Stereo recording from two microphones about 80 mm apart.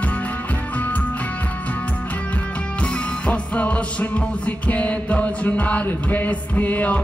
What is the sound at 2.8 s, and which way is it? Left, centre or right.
Music, centre.